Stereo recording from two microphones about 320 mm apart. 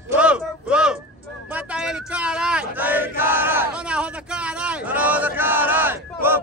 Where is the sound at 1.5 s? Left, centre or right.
Centre.